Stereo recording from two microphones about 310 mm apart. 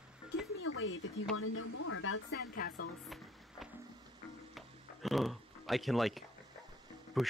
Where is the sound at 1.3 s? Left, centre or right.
Left.